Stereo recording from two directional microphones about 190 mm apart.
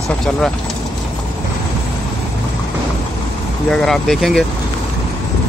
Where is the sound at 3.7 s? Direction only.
Centre (ahead or behind).